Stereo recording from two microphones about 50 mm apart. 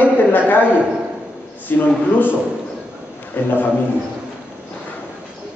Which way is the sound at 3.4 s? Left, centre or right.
Left.